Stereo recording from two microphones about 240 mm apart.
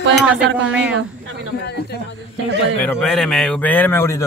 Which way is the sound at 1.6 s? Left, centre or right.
Left.